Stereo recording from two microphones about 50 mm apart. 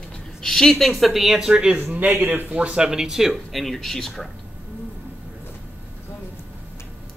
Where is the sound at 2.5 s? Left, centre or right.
Right; by 4.3 s centre.